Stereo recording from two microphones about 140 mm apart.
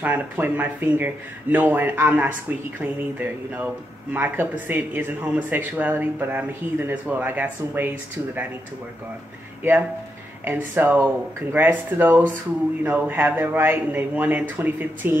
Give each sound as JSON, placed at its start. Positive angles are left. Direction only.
{"t": 0.0, "sound": "speech", "side_deg": -10}
{"t": 9.6, "sound": "speech", "side_deg": -15}